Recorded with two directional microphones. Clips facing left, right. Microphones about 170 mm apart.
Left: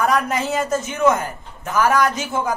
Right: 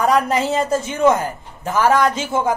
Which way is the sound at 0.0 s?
30° right (ahead or behind).